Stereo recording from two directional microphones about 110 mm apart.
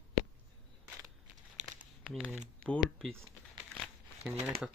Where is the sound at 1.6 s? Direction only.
90° right.